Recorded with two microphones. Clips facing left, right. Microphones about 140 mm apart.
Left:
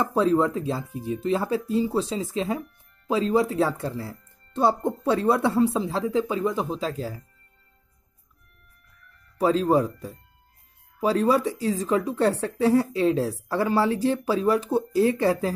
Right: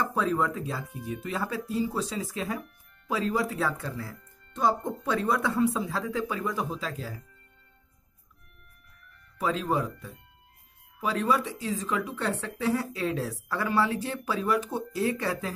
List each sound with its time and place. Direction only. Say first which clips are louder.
0.0 s speech: left 6 dB; 30° left (ahead or behind)
9.4 s speech: left 7 dB; 35° left (ahead or behind)